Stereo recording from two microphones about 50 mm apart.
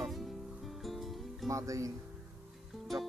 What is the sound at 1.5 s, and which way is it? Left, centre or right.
Speech, right.